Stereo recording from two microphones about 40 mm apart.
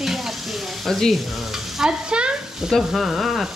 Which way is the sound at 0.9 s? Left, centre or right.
Centre.